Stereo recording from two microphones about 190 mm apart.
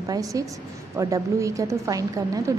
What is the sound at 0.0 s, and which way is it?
A woman's voice, 20° right (ahead or behind).